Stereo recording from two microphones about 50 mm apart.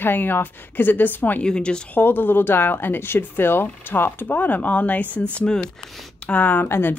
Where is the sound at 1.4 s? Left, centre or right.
Centre.